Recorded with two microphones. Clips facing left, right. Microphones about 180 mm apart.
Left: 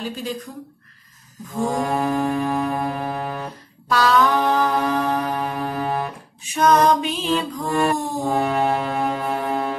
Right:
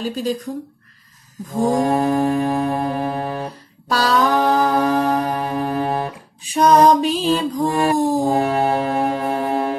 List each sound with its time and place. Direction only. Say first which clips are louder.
1.6 s music: right 5 dB; 30° right (ahead or behind)